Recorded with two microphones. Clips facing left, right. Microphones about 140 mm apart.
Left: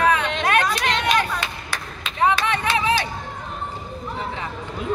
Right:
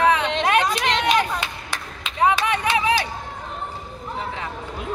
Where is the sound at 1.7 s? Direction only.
15° right (ahead or behind).